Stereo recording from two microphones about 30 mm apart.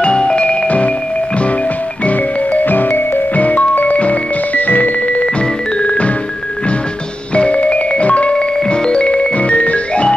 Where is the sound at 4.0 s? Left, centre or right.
Left.